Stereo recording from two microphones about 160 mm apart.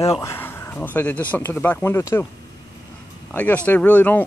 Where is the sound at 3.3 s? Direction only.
10° left (ahead or behind).